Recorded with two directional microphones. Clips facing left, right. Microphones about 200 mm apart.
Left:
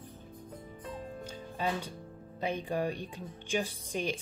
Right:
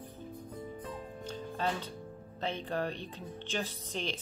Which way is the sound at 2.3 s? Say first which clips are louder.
Left 2 dB; 10° left (ahead or behind).